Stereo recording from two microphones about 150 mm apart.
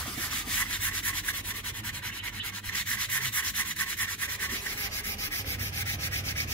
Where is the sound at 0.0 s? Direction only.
10° left (ahead or behind).